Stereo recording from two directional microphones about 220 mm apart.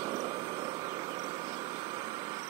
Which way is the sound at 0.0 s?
20° right (ahead or behind).